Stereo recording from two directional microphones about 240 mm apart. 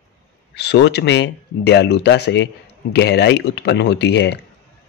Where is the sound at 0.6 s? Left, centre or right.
Left.